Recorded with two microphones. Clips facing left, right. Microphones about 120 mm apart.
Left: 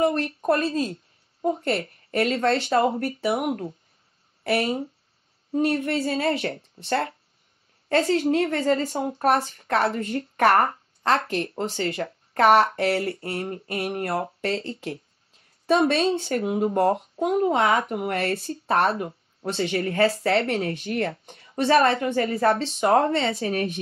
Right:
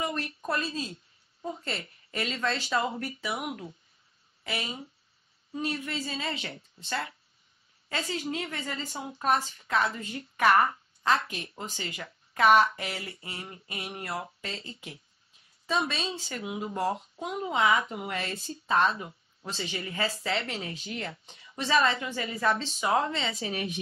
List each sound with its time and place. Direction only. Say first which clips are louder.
0.0 s speech: left 10 dB; 50° left (ahead or behind)